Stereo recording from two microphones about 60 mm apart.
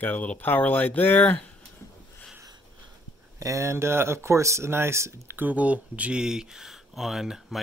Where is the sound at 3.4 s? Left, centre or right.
Right.